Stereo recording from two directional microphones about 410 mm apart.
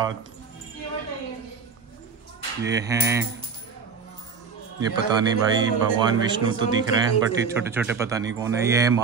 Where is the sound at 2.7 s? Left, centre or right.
Centre.